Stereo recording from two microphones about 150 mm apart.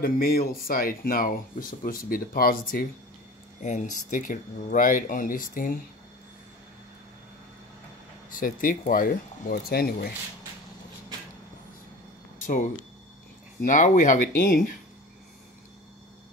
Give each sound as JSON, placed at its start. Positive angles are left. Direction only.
{"t": 0.0, "sound": "speech", "side_deg": 85}
{"t": 3.6, "sound": "speech", "side_deg": 55}
{"t": 8.3, "sound": "speech", "side_deg": 65}
{"t": 12.4, "sound": "speech", "side_deg": 60}